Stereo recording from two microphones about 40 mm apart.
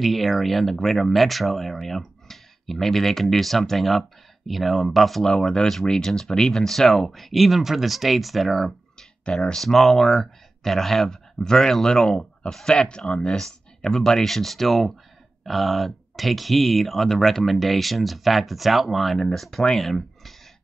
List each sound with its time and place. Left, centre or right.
0.0 s speech: centre
5.2 s speech: centre